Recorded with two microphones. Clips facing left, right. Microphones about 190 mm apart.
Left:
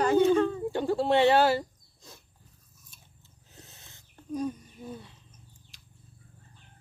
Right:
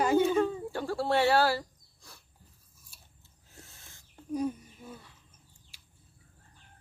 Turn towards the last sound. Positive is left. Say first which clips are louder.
# left 4 dB
turn(degrees=-10)  # may be behind; listen again after turning